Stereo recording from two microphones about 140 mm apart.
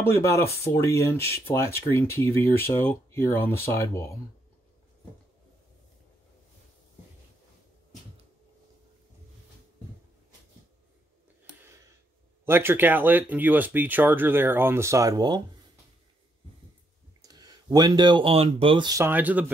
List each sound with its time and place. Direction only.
0.0 s speech: 20° left (ahead or behind)
12.4 s speech: 15° right (ahead or behind)
17.2 s speech: 30° right (ahead or behind)
18.9 s speech: 20° right (ahead or behind)